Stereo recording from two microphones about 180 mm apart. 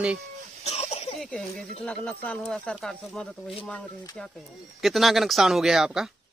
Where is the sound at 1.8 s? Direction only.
10° left (ahead or behind).